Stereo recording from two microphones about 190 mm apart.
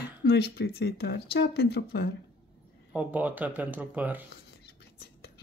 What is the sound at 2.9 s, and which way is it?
Speech, 5° right (ahead or behind).